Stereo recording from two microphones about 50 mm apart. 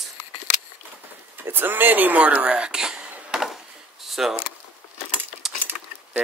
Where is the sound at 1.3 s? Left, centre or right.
Right.